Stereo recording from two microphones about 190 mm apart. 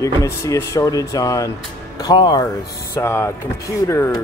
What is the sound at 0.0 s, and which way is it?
Speech, 15° left (ahead or behind).